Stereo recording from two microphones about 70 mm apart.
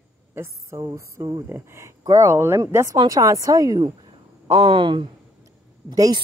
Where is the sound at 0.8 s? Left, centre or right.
Right.